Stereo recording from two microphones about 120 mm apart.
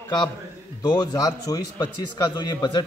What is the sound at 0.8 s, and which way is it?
A man's voice, 35° left (ahead or behind).